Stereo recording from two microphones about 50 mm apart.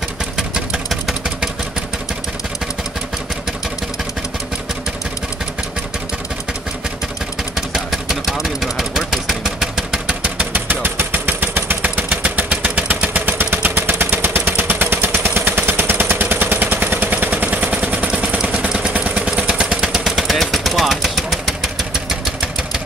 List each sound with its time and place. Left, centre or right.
0.8 s vehicle: centre
7.5 s vehicle: centre
10.2 s a sound: right
10.5 s vehicle: right
15.4 s a sound: right
18.7 s vehicle: right
20.2 s vehicle: centre